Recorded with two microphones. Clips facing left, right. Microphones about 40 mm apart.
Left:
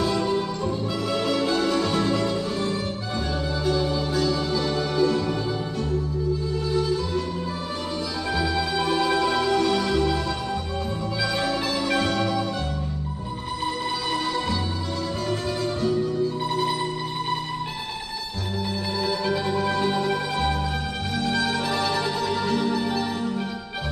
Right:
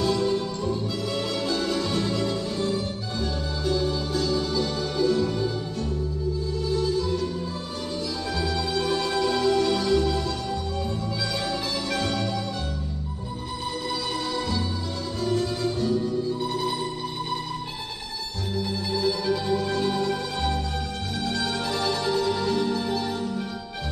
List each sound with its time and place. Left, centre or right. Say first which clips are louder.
0.0 s music: left 1 dB; centre
8.4 s music: left 2 dB; centre
11.4 s music: left 4 dB; centre
15.2 s music: right 4 dB; centre
18.9 s music: even; centre